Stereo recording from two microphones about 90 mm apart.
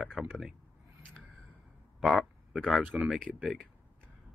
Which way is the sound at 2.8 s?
15° right (ahead or behind).